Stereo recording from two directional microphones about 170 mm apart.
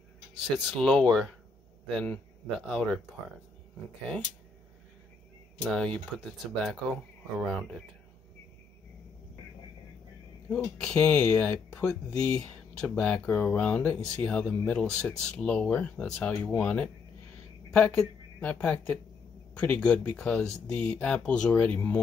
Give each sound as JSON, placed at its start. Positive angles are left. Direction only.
{"t": 0.6, "sound": "speech", "side_deg": 0}
{"t": 5.6, "sound": "speech", "side_deg": 5}
{"t": 10.5, "sound": "speech", "side_deg": 10}
{"t": 12.1, "sound": "speech", "side_deg": 20}
{"t": 12.9, "sound": "speech", "side_deg": 5}